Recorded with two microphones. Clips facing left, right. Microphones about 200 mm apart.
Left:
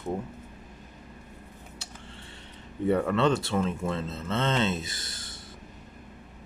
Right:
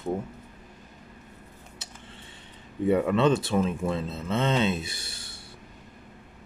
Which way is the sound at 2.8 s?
15° right (ahead or behind).